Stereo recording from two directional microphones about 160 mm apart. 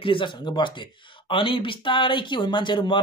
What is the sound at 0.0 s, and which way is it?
Speech, 30° left (ahead or behind).